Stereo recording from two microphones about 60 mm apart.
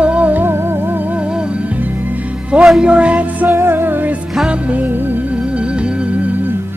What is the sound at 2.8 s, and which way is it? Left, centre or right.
Music, centre.